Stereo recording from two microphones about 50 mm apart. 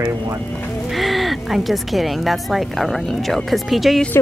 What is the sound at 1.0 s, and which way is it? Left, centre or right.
Speech, centre.